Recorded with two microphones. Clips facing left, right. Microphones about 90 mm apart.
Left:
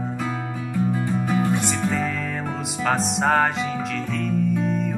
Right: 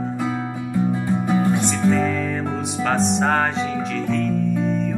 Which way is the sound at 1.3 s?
20° right (ahead or behind).